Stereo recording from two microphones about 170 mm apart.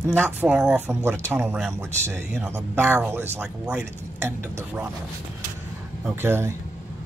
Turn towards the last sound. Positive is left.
turn(degrees=-15)  # may be behind; listen again after turning